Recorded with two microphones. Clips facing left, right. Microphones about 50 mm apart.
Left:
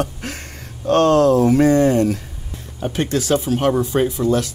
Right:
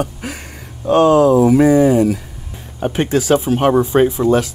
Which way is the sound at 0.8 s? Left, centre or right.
Centre.